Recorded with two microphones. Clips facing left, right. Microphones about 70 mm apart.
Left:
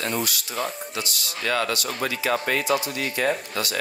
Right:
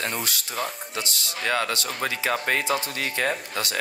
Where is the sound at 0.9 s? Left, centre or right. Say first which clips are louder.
Even; right.